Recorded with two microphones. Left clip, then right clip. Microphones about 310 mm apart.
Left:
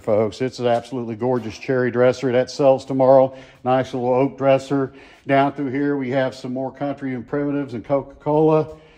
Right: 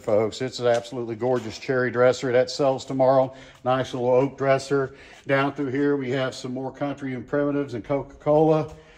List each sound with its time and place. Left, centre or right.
0.0 s speech: left
3.6 s speech: centre
3.9 s speech: left
4.4 s speech: centre